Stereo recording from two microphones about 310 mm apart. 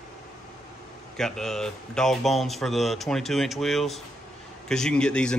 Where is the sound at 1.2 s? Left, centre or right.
Centre.